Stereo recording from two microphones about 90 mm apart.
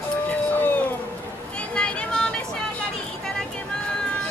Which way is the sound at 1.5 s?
10° left (ahead or behind).